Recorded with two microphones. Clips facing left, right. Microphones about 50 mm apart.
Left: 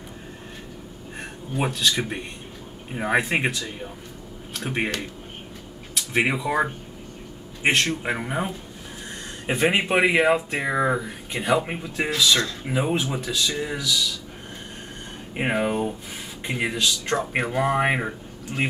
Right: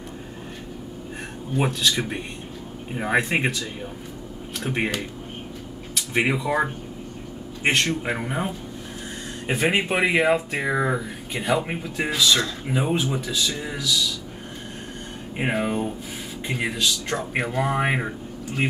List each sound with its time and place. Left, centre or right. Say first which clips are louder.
1.6 s speech: even; centre
15.3 s speech: left 1 dB; centre